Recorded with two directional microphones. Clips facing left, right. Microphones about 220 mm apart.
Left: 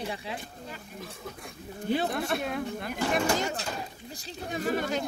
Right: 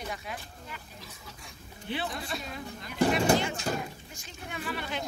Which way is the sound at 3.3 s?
40° left (ahead or behind).